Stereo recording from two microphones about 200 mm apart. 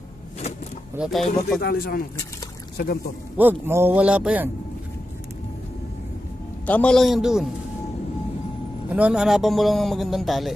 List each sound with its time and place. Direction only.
0.9 s a man's voice: 5° right (ahead or behind)
1.6 s speech: 50° left (ahead or behind)
3.3 s a man's voice: 10° right (ahead or behind)
6.6 s a man's voice: 5° left (ahead or behind)
8.9 s a man's voice: 5° right (ahead or behind)